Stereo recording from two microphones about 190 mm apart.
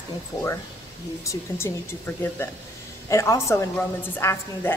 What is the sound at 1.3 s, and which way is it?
A woman's voice, 15° left (ahead or behind).